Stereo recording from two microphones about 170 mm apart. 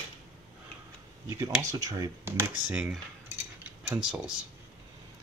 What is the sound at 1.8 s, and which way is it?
Speech, 20° right (ahead or behind).